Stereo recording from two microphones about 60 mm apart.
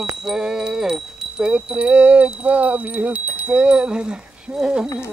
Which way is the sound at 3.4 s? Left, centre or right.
Centre.